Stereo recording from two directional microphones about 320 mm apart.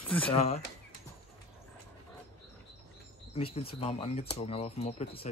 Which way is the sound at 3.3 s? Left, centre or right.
Centre.